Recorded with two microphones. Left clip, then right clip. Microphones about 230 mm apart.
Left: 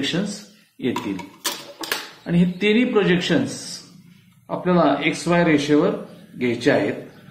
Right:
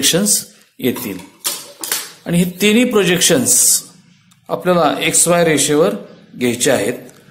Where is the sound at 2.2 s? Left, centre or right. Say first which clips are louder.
Right 7 dB; right.